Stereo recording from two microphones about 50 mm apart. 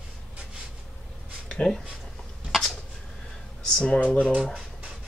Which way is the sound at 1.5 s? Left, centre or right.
Centre.